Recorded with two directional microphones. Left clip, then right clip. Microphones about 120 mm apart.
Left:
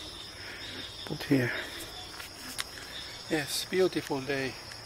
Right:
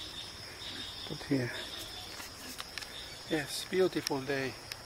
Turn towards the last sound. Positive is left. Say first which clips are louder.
# left 2 dB
turn(degrees=0)  # may be behind; listen again after turning